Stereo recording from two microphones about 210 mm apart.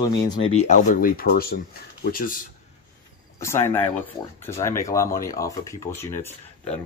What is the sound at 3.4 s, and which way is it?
Speech, 10° left (ahead or behind).